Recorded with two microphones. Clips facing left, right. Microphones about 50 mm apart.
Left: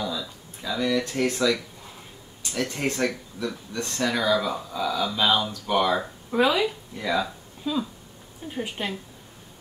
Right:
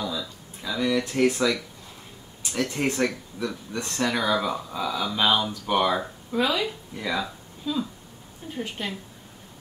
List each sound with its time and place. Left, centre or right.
0.0 s a sound: centre
2.6 s speech: centre
3.3 s speech: centre
6.3 s speech: centre
7.0 s speech: centre
7.7 s speech: left
8.5 s speech: centre